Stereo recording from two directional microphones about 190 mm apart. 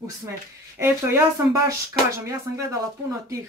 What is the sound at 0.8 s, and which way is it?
Speech, 15° right (ahead or behind).